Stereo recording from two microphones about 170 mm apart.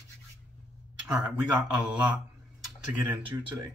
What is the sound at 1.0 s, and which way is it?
Speech, 5° right (ahead or behind).